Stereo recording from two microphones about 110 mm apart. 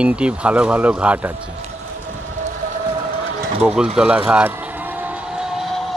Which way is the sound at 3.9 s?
10° right (ahead or behind).